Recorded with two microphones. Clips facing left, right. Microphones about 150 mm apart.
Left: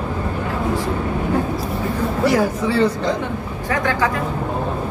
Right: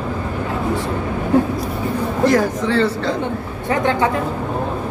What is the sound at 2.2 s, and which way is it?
Speech, 10° left (ahead or behind).